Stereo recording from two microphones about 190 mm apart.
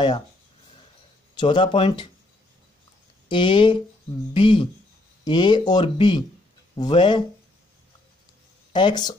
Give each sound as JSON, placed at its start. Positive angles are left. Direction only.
{"t": 1.3, "sound": "speech", "side_deg": 25}
{"t": 3.3, "sound": "speech", "side_deg": 25}
{"t": 8.7, "sound": "speech", "side_deg": 25}